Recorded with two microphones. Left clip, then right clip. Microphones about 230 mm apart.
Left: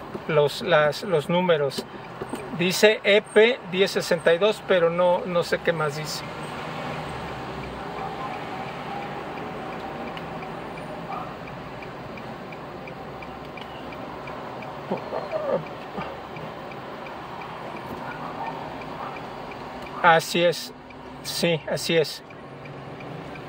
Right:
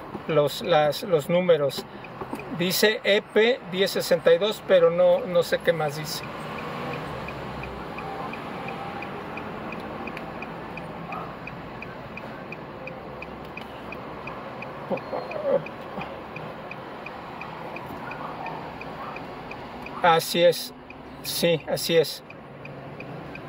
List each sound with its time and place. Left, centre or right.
0.3 s speech: centre
20.0 s speech: centre